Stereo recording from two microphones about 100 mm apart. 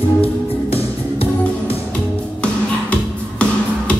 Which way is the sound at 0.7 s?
75° left (ahead or behind).